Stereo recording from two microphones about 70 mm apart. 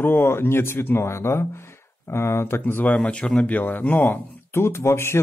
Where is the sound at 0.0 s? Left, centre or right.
Left.